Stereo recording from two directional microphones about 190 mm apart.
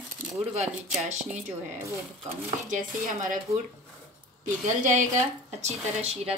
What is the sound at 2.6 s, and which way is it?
Chopping, 45° right (ahead or behind).